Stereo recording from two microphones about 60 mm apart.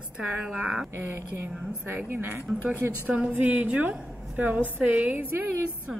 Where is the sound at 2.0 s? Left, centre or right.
Right.